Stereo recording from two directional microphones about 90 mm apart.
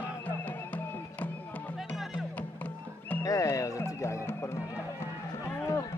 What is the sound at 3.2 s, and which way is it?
Music, 40° left (ahead or behind).